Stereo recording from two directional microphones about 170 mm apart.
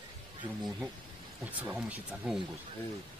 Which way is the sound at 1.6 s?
10° right (ahead or behind).